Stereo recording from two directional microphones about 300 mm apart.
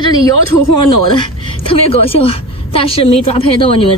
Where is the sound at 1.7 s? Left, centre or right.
Centre.